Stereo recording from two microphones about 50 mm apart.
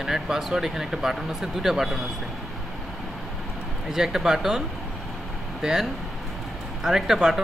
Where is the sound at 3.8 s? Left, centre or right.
Centre.